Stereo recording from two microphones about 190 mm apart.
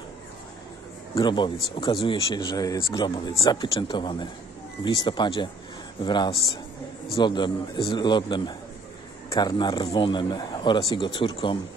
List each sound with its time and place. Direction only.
1.1 s speech: 25° left (ahead or behind)